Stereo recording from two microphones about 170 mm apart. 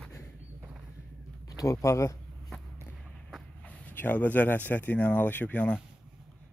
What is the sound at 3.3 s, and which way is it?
Speech, 10° left (ahead or behind).